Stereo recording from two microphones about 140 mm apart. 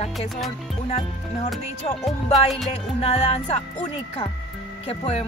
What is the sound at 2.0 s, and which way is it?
Speech, centre (ahead or behind).